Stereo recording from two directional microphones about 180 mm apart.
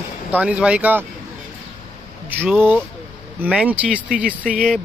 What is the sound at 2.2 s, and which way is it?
Speech, 10° right (ahead or behind).